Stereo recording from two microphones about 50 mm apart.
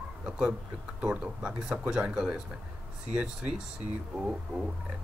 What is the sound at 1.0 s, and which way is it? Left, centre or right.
Speech, centre.